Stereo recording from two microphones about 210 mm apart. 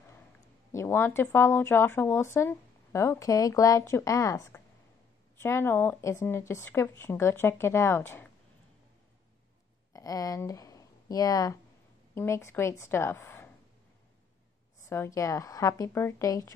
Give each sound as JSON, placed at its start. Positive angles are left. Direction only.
{"t": 0.7, "sound": "speech", "side_deg": 10}
{"t": 9.9, "sound": "speech", "side_deg": 15}
{"t": 14.8, "sound": "speech", "side_deg": 15}